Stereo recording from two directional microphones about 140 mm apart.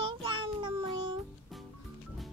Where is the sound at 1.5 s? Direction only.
Centre (ahead or behind).